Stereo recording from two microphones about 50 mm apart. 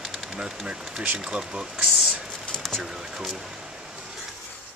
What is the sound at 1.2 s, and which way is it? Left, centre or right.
Speech, centre.